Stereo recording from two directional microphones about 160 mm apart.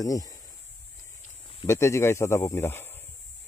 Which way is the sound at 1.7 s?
15° left (ahead or behind).